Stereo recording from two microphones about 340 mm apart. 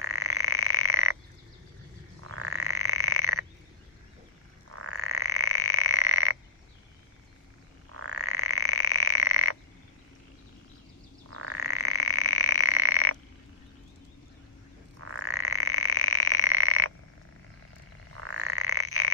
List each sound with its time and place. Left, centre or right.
0.0 s frog: right
2.2 s frog: right
4.6 s frog: right
7.9 s frog: right
11.2 s frog: right
15.0 s frog: right
18.2 s frog: right